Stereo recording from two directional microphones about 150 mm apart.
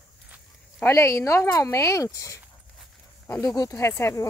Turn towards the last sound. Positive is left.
turn(degrees=20)  # may be behind; listen again after turning